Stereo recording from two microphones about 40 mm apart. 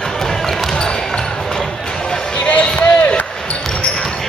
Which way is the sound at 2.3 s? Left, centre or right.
Left.